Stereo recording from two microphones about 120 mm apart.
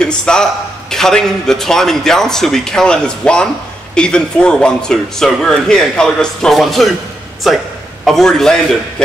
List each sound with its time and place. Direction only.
0.2 s a man's voice: 5° left (ahead or behind)